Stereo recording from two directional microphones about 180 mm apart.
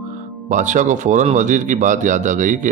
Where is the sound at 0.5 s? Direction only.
45° right (ahead or behind).